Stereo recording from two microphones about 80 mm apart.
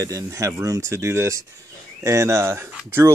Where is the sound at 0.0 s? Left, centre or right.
Right.